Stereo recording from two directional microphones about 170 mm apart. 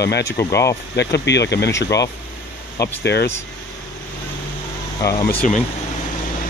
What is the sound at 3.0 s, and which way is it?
Speech, 75° left (ahead or behind).